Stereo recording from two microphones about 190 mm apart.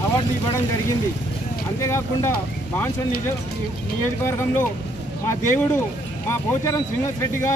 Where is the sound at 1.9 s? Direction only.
15° left (ahead or behind).